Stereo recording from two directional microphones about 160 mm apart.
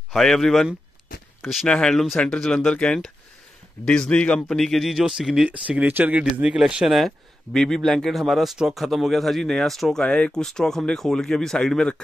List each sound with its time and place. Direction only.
0.1 s speech: centre (ahead or behind)